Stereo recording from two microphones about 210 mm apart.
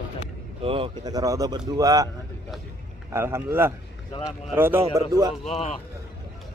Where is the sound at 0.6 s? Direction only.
25° right (ahead or behind).